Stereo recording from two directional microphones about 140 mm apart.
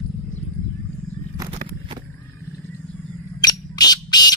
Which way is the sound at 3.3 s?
30° left (ahead or behind).